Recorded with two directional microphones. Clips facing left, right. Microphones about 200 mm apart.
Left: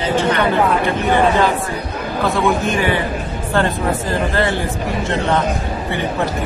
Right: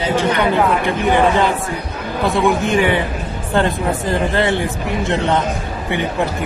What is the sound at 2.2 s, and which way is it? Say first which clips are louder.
Speech: right 2 dB; 15° right (ahead or behind).